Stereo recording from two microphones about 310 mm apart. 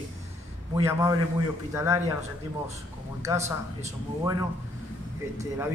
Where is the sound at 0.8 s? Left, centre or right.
Centre.